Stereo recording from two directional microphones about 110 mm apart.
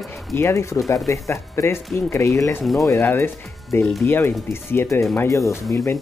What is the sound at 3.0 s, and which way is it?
Speech, 15° left (ahead or behind).